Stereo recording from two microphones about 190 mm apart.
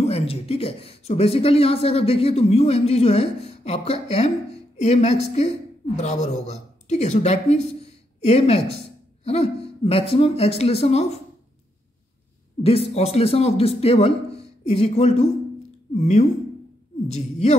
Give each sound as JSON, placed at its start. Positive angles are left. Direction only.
{"t": 0.0, "sound": "a woman's voice", "side_deg": 30}
{"t": 12.6, "sound": "speech", "side_deg": 30}